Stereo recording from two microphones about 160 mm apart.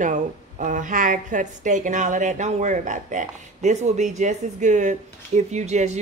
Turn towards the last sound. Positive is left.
turn(degrees=-45)  # may be behind; listen again after turning